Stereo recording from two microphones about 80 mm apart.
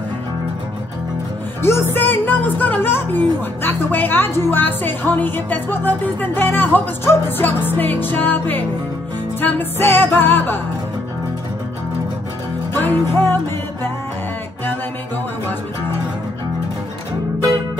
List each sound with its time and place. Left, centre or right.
1.6 s a woman's voice: left
12.7 s a woman's voice: left